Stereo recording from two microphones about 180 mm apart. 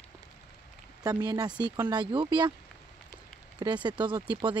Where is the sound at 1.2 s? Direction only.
20° right (ahead or behind).